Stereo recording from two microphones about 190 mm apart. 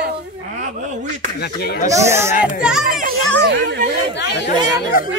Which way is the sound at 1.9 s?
15° right (ahead or behind).